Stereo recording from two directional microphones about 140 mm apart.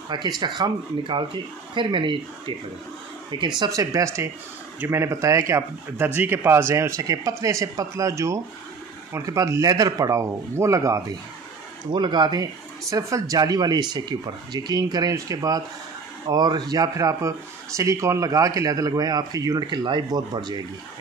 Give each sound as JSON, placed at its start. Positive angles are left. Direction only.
{"t": 0.1, "sound": "speech", "side_deg": -30}